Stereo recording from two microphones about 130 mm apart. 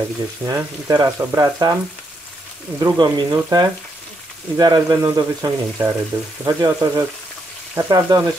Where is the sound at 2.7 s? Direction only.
30° right (ahead or behind).